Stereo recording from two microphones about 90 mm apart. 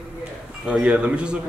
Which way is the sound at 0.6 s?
10° right (ahead or behind).